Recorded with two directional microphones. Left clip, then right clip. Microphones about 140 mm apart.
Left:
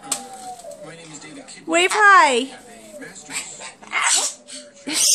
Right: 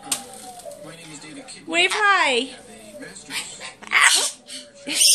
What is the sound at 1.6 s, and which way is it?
Speech, 50° left (ahead or behind).